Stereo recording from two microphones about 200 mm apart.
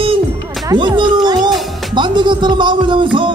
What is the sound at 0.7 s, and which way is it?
Music, 25° right (ahead or behind).